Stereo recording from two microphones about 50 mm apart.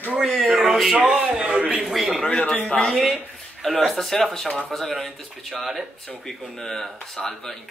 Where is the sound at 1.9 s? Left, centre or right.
Centre.